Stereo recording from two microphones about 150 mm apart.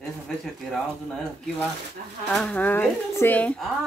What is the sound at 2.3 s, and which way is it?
A woman's voice, 5° left (ahead or behind).